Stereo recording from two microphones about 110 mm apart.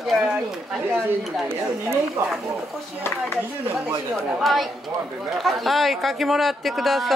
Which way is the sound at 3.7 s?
20° right (ahead or behind).